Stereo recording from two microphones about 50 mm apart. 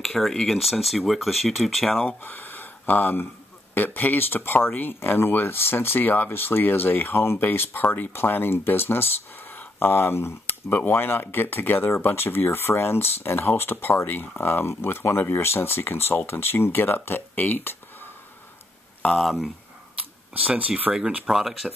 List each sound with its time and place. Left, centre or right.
0.0 s speech: centre
2.0 s speech: left
19.1 s speech: centre
20.5 s speech: right
21.3 s speech: centre